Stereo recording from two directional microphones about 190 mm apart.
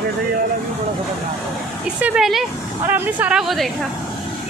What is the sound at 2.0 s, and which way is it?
A woman's voice, 5° right (ahead or behind).